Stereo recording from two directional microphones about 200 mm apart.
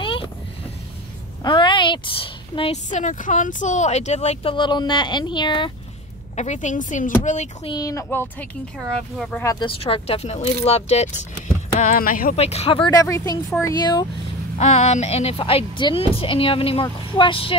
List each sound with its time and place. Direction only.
0.0 s a sound: 25° left (ahead or behind)
1.4 s a woman's voice: 25° left (ahead or behind)
6.3 s a woman's voice: 35° left (ahead or behind)
7.7 s speech: 15° left (ahead or behind)
8.7 s speech: centre (ahead or behind)
9.4 s a woman's voice: 20° left (ahead or behind); by 12.4 s 45° left (ahead or behind)
12.4 s a woman's voice: 30° left (ahead or behind)
14.6 s a woman's voice: 35° left (ahead or behind)